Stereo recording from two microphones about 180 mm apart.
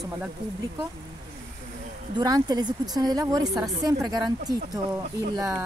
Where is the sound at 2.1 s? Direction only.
20° right (ahead or behind).